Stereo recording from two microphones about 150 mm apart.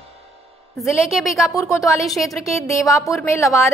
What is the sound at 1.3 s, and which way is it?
A woman's voice, 20° left (ahead or behind).